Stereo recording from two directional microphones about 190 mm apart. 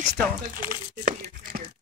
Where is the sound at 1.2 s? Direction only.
45° right (ahead or behind).